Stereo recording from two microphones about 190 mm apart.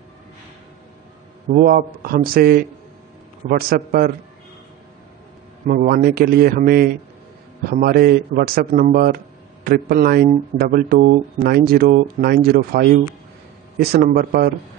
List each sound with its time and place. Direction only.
1.5 s speech: 45° right (ahead or behind)
5.7 s speech: 50° right (ahead or behind)